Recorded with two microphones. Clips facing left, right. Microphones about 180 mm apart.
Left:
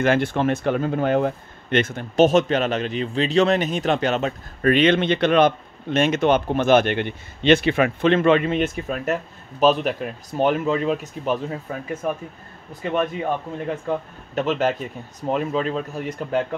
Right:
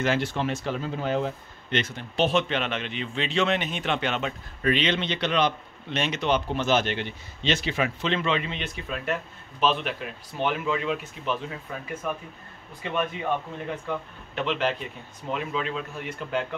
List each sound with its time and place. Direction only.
0.0 s speech: 55° left (ahead or behind)
13.8 s speech: 40° left (ahead or behind)